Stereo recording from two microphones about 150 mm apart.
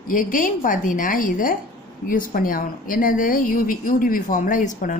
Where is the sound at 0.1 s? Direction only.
65° left (ahead or behind).